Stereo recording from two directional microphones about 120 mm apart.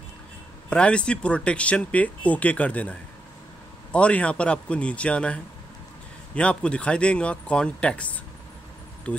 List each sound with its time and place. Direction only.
0.7 s speech: 10° left (ahead or behind)